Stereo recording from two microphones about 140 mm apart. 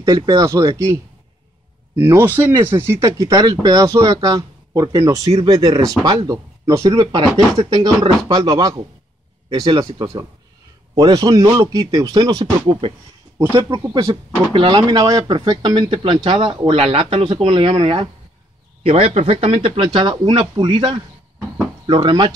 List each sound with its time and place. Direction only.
0.0 s speech: 25° right (ahead or behind)
13.4 s speech: 15° right (ahead or behind)
14.5 s a man's voice: 35° right (ahead or behind)